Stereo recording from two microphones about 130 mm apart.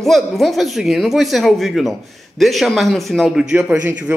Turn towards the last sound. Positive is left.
turn(degrees=-15)  # may be behind; listen again after turning